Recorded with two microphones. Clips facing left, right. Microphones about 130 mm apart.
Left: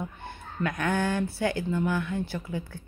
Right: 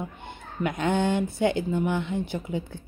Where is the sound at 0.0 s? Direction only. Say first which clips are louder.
Right 1 dB; 20° right (ahead or behind).